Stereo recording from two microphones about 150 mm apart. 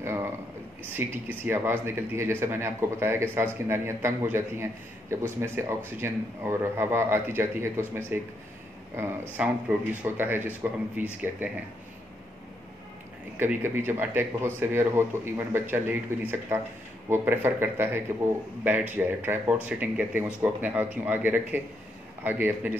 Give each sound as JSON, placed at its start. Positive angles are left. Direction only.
{"t": 0.0, "sound": "a sound", "side_deg": -15}
{"t": 0.8, "sound": "speech", "side_deg": -15}
{"t": 9.4, "sound": "speech", "side_deg": -15}
{"t": 13.4, "sound": "speech", "side_deg": -15}